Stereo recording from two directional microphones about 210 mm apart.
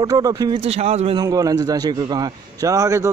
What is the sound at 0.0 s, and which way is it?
A man's voice, 15° right (ahead or behind).